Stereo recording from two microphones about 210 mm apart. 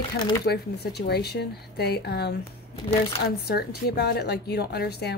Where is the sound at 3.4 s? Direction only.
50° left (ahead or behind).